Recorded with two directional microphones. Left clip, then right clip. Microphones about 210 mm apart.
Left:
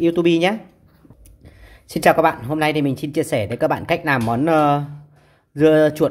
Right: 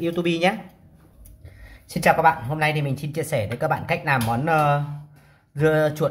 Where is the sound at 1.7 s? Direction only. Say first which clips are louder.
Left 4 dB; 40° left (ahead or behind).